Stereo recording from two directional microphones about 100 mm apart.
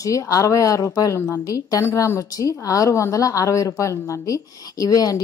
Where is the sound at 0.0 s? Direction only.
35° left (ahead or behind).